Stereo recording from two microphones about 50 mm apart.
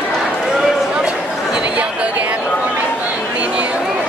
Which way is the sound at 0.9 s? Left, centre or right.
Centre.